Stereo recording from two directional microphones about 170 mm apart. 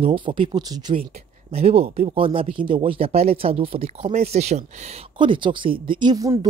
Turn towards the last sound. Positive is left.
turn(degrees=-20)  # may be behind; listen again after turning